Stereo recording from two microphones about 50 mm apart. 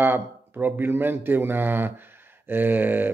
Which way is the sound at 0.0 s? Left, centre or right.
Right.